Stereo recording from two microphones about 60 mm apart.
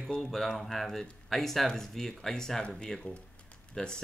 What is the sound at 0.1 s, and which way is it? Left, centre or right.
Speech, centre.